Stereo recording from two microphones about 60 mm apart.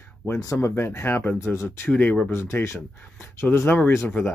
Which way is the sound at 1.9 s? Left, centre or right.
Left.